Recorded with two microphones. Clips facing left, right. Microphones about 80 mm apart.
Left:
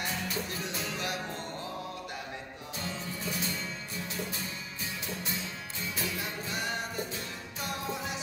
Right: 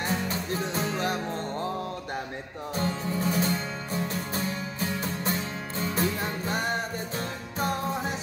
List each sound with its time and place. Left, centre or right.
0.0 s music: right
2.7 s music: right